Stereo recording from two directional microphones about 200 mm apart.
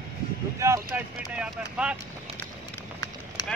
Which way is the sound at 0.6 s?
10° right (ahead or behind).